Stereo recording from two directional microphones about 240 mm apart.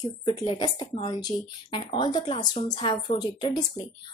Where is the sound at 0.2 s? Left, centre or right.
Centre.